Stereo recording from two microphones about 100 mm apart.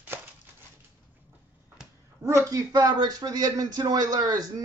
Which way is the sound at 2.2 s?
30° right (ahead or behind).